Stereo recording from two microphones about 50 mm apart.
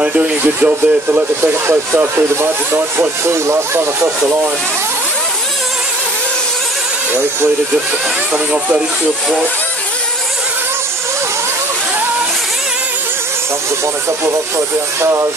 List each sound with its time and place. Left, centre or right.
0.0 s speech: right
2.1 s speech: right
15.0 s speech: right